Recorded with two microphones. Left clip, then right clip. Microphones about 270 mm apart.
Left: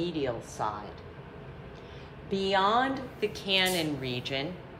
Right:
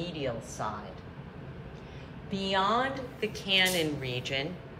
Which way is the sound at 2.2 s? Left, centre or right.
Left.